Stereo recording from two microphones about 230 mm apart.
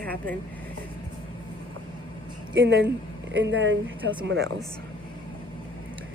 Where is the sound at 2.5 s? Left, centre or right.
Right.